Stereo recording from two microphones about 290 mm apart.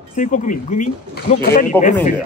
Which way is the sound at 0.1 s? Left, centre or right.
Left.